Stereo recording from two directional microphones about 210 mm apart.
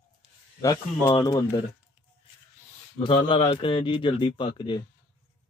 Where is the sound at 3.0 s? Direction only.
25° left (ahead or behind).